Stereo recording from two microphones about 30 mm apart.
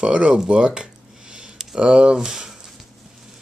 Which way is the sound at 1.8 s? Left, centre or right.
Right.